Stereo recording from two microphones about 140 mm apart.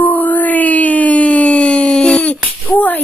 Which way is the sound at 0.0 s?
10° left (ahead or behind).